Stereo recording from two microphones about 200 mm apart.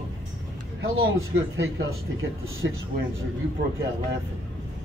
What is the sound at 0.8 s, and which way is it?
Speech, 70° right (ahead or behind).